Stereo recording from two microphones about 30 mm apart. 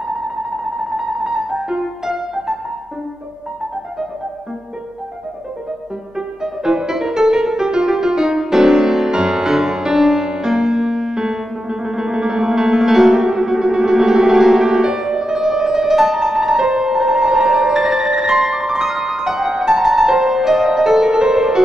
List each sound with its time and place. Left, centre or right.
0.1 s music: right
6.1 s music: centre
18.1 s music: right
18.4 s music: centre
20.1 s music: centre
20.3 s music: centre
21.1 s music: right